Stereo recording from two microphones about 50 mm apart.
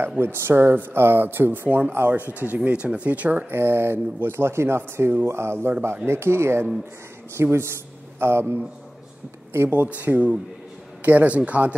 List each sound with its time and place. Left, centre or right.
0.2 s speech: right
3.5 s speech: right
9.8 s speech: right